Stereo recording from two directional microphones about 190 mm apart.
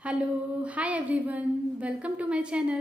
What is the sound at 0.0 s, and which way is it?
A woman's voice, 5° right (ahead or behind).